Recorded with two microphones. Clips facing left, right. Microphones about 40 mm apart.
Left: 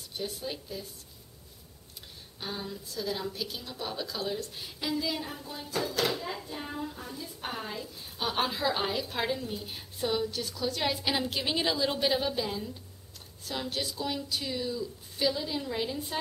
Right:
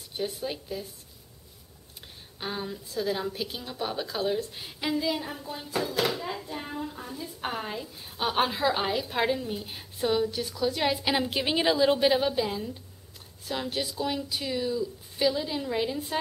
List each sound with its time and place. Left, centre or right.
0.3 s a woman's voice: centre
2.4 s a woman's voice: right